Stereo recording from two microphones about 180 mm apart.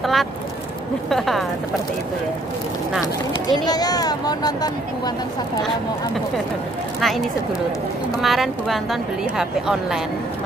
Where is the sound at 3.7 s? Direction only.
20° left (ahead or behind).